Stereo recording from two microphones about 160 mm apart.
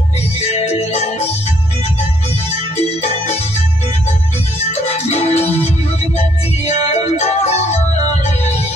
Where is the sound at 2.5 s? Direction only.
40° left (ahead or behind).